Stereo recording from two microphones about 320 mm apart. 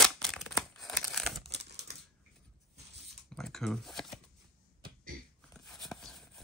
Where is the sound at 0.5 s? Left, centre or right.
Centre.